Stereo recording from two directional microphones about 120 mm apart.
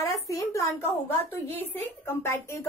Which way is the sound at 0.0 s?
30° left (ahead or behind).